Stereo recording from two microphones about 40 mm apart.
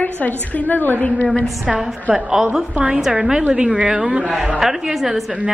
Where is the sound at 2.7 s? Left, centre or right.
Right.